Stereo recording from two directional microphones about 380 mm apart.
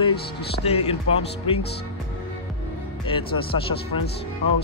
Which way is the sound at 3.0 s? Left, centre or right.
Centre.